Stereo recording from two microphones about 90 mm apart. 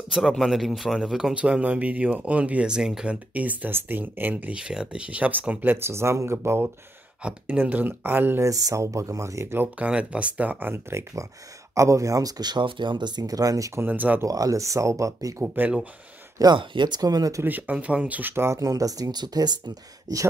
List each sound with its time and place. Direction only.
0.1 s speech: centre (ahead or behind); by 6.7 s 25° right (ahead or behind)
7.2 s speech: 15° right (ahead or behind)
8.5 s speech: 40° right (ahead or behind)
9.6 s speech: 15° right (ahead or behind); by 13.7 s 40° right (ahead or behind)
13.7 s speech: 20° right (ahead or behind)
14.2 s speech: 40° right (ahead or behind)
15.4 s speech: 20° right (ahead or behind)
16.5 s speech: 60° right (ahead or behind)
17.4 s speech: 20° right (ahead or behind)
18.6 s speech: 40° right (ahead or behind)